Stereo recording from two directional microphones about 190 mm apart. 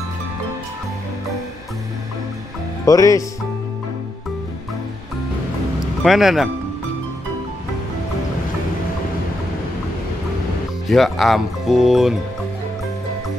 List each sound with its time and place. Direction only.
2.8 s speech: 20° left (ahead or behind)
6.0 s speech: centre (ahead or behind)
10.9 s speech: centre (ahead or behind)